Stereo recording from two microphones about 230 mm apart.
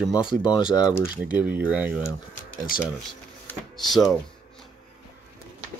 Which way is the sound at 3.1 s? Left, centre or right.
Centre.